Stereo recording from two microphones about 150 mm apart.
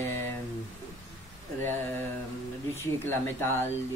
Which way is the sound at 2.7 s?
15° left (ahead or behind).